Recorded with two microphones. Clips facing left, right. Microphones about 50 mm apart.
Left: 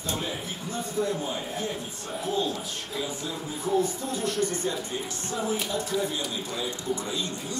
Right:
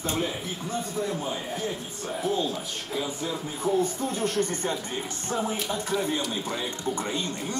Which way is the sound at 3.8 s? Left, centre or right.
Right.